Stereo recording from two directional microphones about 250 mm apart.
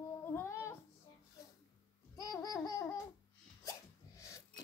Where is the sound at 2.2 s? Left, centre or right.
Centre.